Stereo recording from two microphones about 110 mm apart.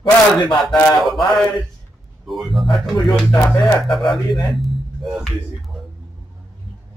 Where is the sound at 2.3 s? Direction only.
Centre (ahead or behind).